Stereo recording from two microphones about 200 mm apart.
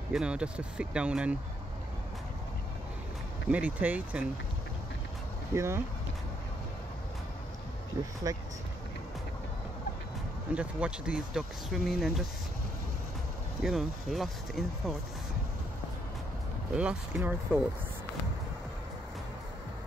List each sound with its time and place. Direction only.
0.1 s speech: 5° right (ahead or behind)
3.4 s speech: 5° right (ahead or behind)
5.5 s speech: 15° right (ahead or behind)
8.3 s speech: 15° right (ahead or behind)
10.5 s speech: 5° right (ahead or behind)
13.6 s speech: centre (ahead or behind)
16.7 s speech: 5° right (ahead or behind)